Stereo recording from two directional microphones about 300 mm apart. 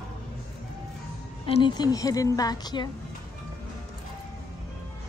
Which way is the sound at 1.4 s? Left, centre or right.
Centre.